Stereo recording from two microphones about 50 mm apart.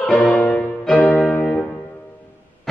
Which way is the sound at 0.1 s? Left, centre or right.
Left.